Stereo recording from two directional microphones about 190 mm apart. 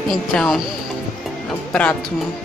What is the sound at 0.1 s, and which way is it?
Speech, centre (ahead or behind).